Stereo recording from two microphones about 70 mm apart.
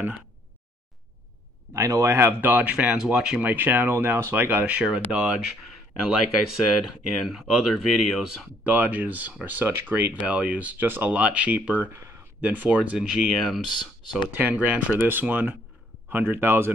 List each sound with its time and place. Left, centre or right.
1.9 s speech: right
2.4 s speech: right
3.3 s speech: right; by 8.3 s centre
8.6 s speech: right
13.2 s speech: centre
14.3 s speech: right